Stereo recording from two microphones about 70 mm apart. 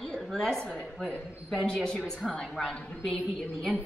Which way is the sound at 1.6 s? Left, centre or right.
Centre.